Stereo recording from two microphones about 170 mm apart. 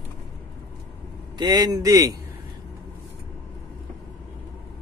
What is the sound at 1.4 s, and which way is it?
Speech, 25° right (ahead or behind).